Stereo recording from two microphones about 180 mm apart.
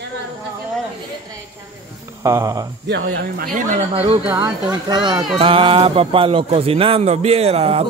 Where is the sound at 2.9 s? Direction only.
70° right (ahead or behind).